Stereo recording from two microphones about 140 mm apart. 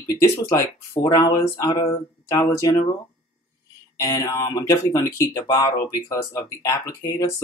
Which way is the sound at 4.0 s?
25° left (ahead or behind).